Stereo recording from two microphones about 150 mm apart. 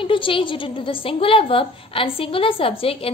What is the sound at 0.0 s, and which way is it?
A woman's voice, 35° left (ahead or behind).